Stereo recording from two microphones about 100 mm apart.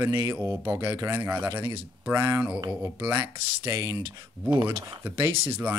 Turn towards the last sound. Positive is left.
turn(degrees=-25)  # may be behind; listen again after turning